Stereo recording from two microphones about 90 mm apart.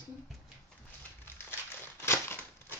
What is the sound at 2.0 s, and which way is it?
Crumpling, 25° left (ahead or behind).